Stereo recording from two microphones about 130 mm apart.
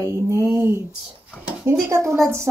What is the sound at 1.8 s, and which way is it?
Speech, 20° right (ahead or behind).